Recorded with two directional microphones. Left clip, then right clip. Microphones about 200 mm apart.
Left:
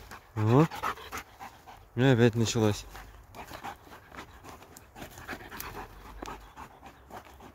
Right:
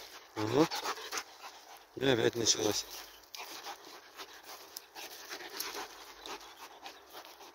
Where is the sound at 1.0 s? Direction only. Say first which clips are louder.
Even; centre (ahead or behind).